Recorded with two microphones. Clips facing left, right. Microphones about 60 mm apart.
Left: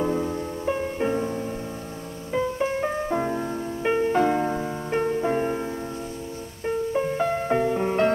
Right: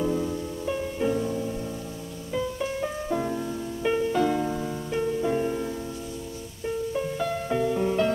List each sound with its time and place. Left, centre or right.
0.0 s music: left